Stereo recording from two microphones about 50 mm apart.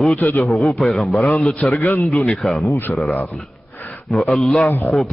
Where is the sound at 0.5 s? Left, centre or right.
Centre.